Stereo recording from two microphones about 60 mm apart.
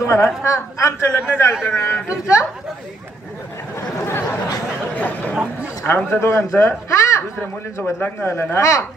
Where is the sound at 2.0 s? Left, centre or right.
Left.